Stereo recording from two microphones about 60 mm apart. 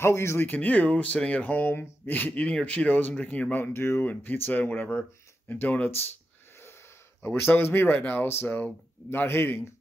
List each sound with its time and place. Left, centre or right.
0.0 s speech: left
0.5 s speech: left
5.5 s speech: left
7.2 s speech: left
8.5 s speech: left
9.1 s speech: left